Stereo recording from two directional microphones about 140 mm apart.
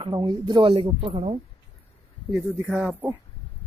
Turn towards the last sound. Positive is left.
turn(degrees=-10)  # may be behind; listen again after turning